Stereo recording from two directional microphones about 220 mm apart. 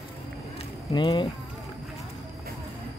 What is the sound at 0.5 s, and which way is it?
Run, 20° left (ahead or behind).